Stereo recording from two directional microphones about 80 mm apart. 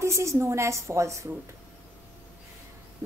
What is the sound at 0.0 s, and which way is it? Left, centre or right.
A woman's voice, right.